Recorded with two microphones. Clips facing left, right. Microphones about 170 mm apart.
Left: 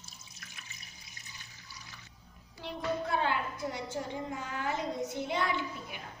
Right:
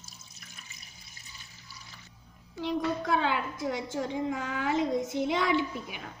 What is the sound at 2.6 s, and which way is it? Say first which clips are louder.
A woman's voice: right 5 dB; 90° right.